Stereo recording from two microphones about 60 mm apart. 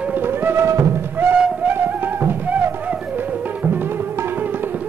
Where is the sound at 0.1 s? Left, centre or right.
Right.